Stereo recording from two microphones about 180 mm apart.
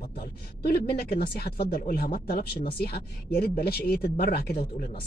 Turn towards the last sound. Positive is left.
turn(degrees=60)  # may be behind; listen again after turning